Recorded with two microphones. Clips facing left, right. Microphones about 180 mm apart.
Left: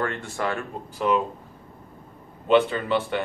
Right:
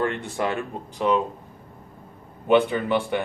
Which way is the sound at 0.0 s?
20° right (ahead or behind).